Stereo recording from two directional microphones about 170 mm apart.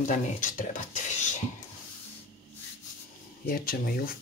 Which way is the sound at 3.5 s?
60° left (ahead or behind).